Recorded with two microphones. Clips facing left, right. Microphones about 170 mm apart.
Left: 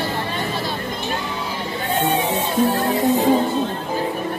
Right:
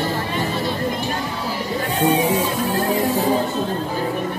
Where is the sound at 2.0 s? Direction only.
30° left (ahead or behind).